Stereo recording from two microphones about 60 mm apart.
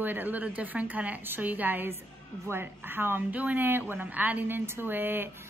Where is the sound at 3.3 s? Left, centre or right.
Right.